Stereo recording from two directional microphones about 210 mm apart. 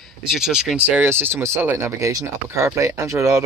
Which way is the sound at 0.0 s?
Centre (ahead or behind).